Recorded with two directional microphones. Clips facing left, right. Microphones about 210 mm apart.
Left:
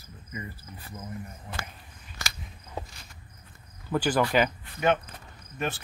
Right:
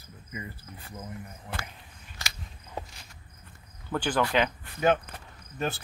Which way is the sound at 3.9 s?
10° left (ahead or behind).